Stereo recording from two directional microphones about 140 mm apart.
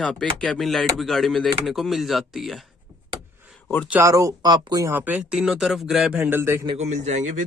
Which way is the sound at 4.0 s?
20° right (ahead or behind).